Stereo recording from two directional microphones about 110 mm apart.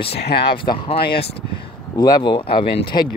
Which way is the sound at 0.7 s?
50° left (ahead or behind).